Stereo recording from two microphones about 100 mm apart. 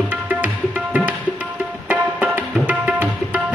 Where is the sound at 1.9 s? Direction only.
15° right (ahead or behind).